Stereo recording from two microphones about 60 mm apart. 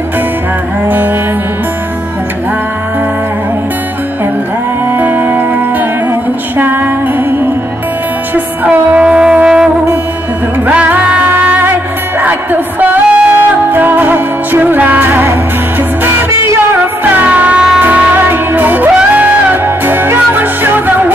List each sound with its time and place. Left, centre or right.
4.9 s music: right
8.6 s music: right
10.7 s music: centre
12.8 s music: right
17.2 s music: right